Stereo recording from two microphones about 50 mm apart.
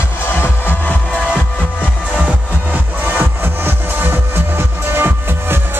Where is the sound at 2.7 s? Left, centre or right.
Right.